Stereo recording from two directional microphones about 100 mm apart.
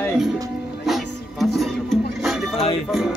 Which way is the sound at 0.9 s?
Centre (ahead or behind).